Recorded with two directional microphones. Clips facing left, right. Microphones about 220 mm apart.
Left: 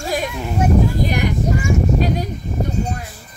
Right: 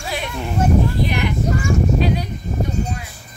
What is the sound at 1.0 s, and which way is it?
Speech, 40° left (ahead or behind).